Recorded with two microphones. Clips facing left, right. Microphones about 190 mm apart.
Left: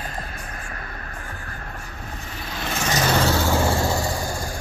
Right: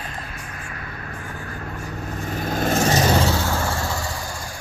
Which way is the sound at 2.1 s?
45° right (ahead or behind).